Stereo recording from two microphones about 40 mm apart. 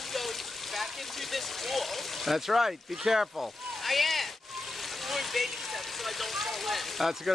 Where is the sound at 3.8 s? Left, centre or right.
Centre.